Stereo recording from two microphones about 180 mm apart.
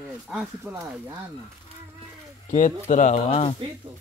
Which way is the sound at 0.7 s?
15° right (ahead or behind).